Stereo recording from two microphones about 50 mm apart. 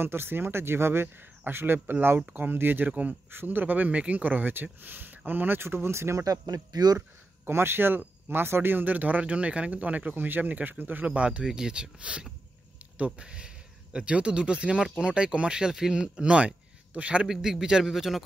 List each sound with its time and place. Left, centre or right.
0.0 s speech: right
2.9 s speech: right
3.3 s speech: right
7.4 s speech: right
17.3 s speech: centre